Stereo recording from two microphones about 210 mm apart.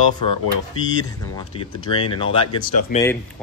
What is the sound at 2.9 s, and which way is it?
Speech, 40° left (ahead or behind).